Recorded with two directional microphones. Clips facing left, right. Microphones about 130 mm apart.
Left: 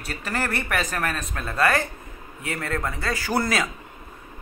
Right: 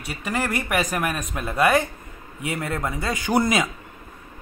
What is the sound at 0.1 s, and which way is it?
A man's voice, 10° right (ahead or behind).